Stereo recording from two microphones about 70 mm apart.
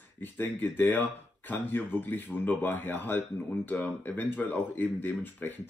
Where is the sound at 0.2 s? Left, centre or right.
Left.